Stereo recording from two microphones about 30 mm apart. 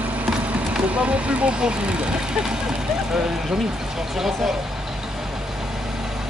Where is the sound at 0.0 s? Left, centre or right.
Right.